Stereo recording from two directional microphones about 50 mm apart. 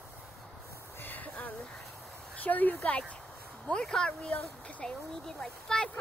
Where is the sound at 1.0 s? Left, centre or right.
Left.